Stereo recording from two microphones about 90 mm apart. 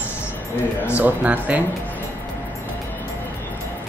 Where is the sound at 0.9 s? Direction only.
20° right (ahead or behind).